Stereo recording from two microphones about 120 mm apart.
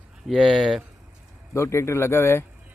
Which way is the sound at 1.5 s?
25° left (ahead or behind).